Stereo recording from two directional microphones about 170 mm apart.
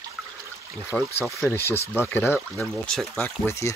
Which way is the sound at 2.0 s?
10° left (ahead or behind).